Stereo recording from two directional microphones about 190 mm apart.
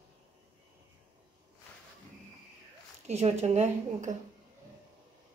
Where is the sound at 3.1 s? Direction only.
35° right (ahead or behind).